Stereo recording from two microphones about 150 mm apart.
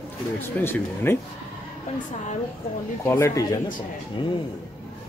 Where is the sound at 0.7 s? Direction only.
15° left (ahead or behind).